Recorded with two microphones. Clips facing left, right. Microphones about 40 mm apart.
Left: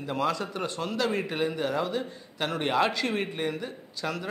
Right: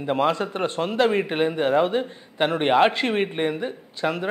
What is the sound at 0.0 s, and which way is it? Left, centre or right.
Speech, right.